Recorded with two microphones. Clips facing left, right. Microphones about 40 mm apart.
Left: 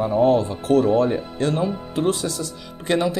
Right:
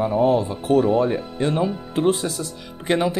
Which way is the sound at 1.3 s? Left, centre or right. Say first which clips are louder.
Even; centre.